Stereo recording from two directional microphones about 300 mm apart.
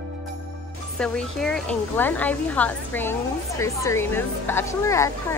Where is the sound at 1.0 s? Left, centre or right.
Centre.